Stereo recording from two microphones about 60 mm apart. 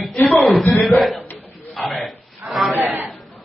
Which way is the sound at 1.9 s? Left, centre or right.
Centre.